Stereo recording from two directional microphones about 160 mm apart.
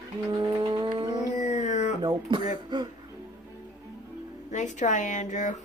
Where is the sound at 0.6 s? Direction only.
30° right (ahead or behind).